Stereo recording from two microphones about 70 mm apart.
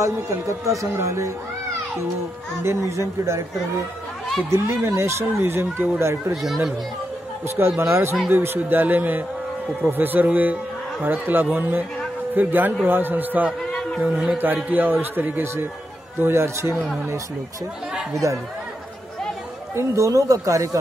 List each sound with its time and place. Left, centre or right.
0.0 s speech: right
2.6 s speech: right
4.5 s speech: right
6.3 s speech: centre
7.4 s speech: right
8.5 s speech: right
13.7 s chatter: centre
14.0 s speech: centre
14.4 s speech: right
19.7 s speech: right